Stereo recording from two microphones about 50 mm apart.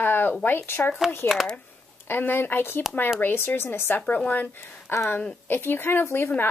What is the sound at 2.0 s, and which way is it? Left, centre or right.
Speech, left.